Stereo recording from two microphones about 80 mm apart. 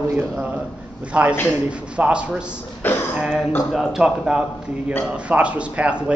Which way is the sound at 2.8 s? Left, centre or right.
Left.